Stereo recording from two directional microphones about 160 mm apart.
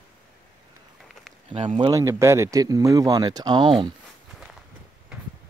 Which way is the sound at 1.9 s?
20° right (ahead or behind).